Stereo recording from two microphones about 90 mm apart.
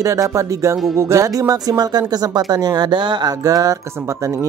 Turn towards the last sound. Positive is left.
turn(degrees=-35)  # may be behind; listen again after turning